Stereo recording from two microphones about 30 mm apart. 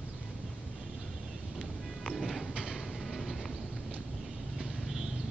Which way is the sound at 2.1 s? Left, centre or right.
Centre.